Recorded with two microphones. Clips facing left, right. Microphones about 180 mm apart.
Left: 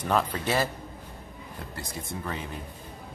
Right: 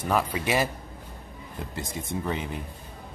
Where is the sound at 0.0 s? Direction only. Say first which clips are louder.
Right 1 dB; 10° right (ahead or behind).